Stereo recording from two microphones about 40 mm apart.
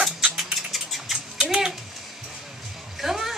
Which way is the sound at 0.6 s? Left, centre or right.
Centre.